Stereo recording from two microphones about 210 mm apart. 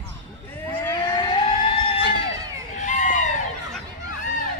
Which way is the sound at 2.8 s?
35° left (ahead or behind).